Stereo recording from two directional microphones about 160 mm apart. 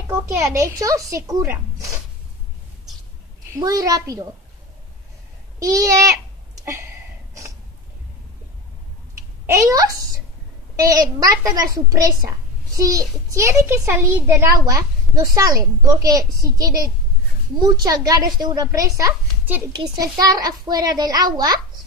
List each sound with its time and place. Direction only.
0.1 s a woman's voice: 20° right (ahead or behind)
3.5 s a woman's voice: 20° right (ahead or behind)
5.6 s a woman's voice: 20° right (ahead or behind)
6.6 s a sound: 15° right (ahead or behind)
9.5 s a woman's voice: 20° right (ahead or behind)